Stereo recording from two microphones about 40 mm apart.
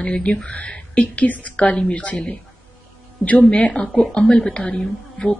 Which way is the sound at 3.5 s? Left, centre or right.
Left.